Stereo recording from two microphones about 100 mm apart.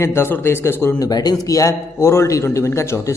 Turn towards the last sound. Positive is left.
turn(degrees=30)  # may be behind; listen again after turning